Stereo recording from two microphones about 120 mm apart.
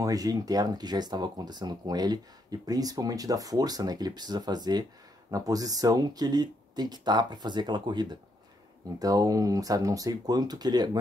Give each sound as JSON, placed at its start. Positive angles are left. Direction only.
{"t": 0.0, "sound": "speech", "side_deg": -30}